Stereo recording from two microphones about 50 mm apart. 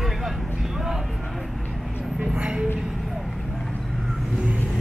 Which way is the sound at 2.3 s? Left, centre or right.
Right.